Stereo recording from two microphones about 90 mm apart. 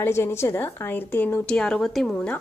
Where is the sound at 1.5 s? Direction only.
5° left (ahead or behind).